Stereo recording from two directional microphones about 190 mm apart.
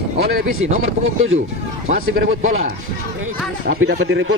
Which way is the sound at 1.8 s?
50° right (ahead or behind).